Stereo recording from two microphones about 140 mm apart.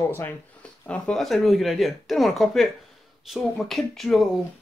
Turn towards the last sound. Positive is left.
turn(degrees=0)  # may be behind; listen again after turning